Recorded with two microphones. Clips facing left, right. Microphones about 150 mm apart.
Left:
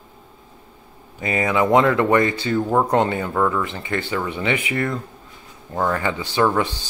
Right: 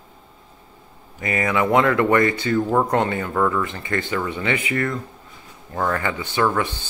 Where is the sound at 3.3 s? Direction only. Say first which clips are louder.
Right 1 dB; 5° left (ahead or behind).